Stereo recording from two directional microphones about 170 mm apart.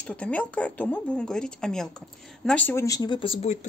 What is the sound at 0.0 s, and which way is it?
Speech, 5° left (ahead or behind).